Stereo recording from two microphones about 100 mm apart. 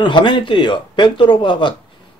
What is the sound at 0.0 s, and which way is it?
Speech, 50° left (ahead or behind).